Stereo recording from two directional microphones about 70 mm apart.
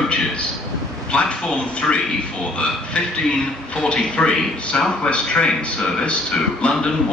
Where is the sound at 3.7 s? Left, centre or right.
Centre.